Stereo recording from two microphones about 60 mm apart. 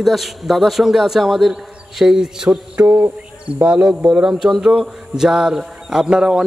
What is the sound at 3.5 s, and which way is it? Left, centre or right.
A man's voice, right.